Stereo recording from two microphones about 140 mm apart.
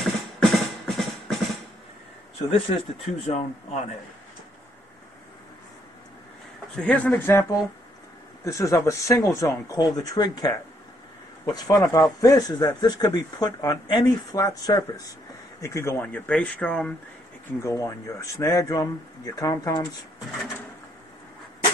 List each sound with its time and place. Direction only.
0.0 s a sound: centre (ahead or behind)
3.3 s speech: 55° left (ahead or behind)
6.7 s speech: 10° left (ahead or behind)
17.6 s speech: 20° left (ahead or behind)